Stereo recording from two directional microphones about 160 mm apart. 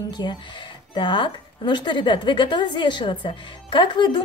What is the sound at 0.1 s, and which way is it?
A woman's voice, 25° left (ahead or behind).